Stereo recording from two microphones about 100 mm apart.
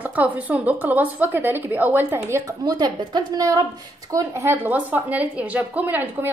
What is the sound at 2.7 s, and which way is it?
A woman's voice, 40° right (ahead or behind).